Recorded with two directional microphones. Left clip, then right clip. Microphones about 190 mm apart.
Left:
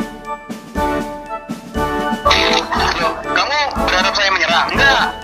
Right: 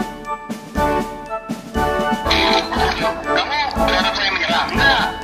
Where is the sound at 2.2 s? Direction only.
35° left (ahead or behind).